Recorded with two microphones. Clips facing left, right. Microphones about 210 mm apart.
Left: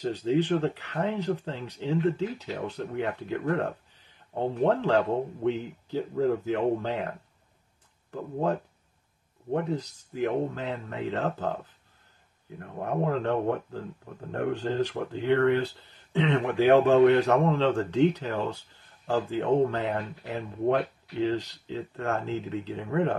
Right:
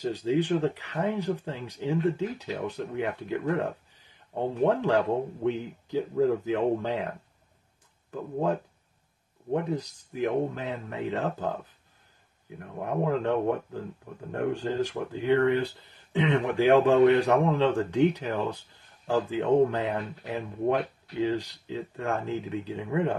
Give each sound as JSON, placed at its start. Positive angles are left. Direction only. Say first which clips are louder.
{"t": 0.0, "sound": "speech", "louder": "left 1 dB", "side_deg": -10}
{"t": 9.5, "sound": "speech", "louder": "even", "side_deg": -15}
{"t": 12.8, "sound": "speech", "louder": "even", "side_deg": -15}